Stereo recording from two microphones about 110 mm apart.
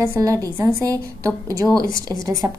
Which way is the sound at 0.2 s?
30° right (ahead or behind).